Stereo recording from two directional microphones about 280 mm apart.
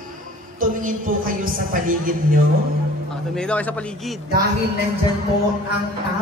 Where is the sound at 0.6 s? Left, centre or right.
Right.